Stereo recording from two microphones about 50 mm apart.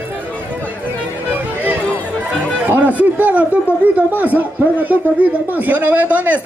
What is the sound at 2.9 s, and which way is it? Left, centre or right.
Speech, right.